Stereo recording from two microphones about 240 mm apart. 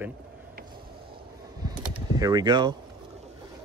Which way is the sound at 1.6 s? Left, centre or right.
Centre.